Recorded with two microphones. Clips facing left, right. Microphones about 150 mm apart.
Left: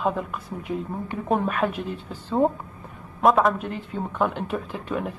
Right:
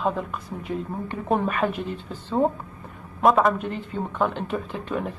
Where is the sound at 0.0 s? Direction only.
Centre (ahead or behind).